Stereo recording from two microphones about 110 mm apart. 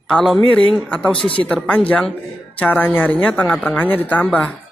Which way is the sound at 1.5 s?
10° left (ahead or behind).